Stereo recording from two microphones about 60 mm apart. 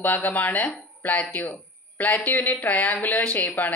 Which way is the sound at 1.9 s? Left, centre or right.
Left.